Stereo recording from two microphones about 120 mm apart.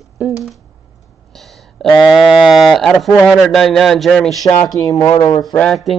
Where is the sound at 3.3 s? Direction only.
Centre (ahead or behind).